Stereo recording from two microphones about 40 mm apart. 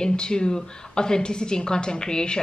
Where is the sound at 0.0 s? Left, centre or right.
Centre.